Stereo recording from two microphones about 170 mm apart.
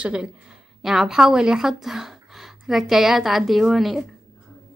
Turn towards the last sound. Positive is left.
turn(degrees=0)  # may be behind; listen again after turning